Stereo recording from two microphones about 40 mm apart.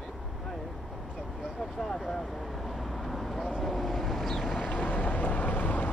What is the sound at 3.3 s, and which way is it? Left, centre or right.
Vehicle, centre.